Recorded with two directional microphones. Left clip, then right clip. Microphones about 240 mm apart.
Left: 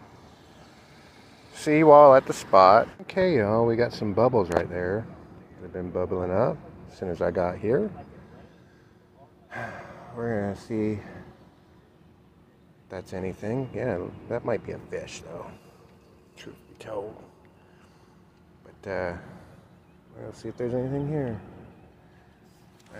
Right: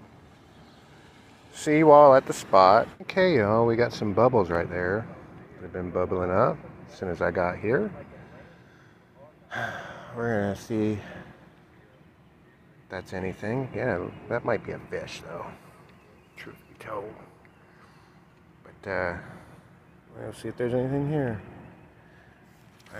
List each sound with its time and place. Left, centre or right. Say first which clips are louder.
1.5 s speech: left 1 dB; centre
9.5 s speech: right 4 dB; centre
12.9 s speech: even; centre
16.3 s a sound: right 1 dB; centre
18.8 s speech: right 1 dB; centre
20.2 s speech: right 2 dB; centre